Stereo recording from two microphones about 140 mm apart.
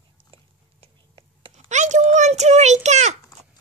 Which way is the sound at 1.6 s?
60° right (ahead or behind).